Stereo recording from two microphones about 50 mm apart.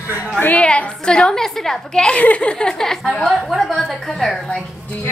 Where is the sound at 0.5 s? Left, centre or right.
Left.